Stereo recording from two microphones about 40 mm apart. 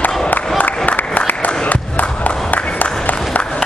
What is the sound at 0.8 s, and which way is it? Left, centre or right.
Applause, left.